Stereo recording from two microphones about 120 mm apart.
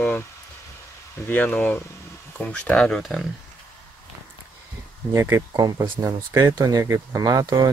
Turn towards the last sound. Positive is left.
turn(degrees=-30)  # may be behind; listen again after turning